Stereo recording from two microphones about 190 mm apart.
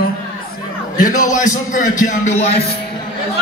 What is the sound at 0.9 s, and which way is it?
A man's voice, 45° left (ahead or behind).